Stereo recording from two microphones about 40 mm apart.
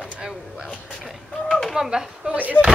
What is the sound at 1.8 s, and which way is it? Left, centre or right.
Speech, centre.